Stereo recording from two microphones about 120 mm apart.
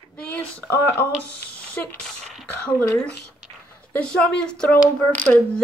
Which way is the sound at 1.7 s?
5° left (ahead or behind).